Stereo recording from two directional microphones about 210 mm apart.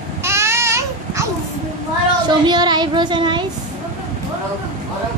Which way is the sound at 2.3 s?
20° right (ahead or behind).